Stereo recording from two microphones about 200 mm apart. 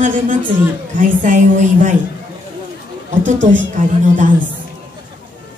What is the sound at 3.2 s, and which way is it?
A woman's voice, 40° right (ahead or behind).